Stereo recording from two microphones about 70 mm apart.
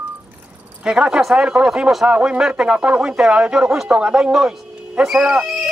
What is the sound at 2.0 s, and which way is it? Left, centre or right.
Speech, centre.